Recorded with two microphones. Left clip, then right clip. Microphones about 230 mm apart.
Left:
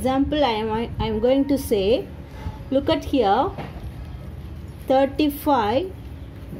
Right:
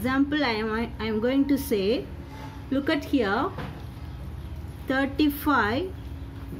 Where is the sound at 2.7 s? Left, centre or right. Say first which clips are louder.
Left 5 dB; right.